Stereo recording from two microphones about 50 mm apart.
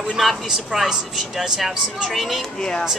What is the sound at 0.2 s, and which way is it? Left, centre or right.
A woman's voice, centre.